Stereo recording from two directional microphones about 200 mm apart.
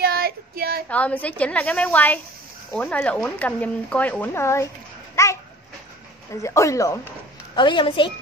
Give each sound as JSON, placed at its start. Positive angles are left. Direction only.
{"t": 0.0, "sound": "child singing", "side_deg": -50}
{"t": 0.8, "sound": "speech", "side_deg": 5}
{"t": 5.1, "sound": "babbling", "side_deg": 15}
{"t": 6.4, "sound": "a woman's voice", "side_deg": 15}